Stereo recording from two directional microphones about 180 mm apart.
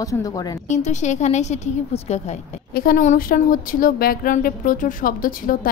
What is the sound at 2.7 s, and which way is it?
A woman's voice, 55° left (ahead or behind).